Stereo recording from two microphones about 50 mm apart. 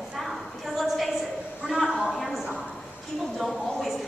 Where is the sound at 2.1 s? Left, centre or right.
Centre.